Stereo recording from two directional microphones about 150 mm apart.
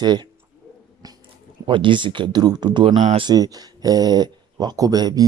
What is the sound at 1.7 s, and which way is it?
Speech, 35° right (ahead or behind).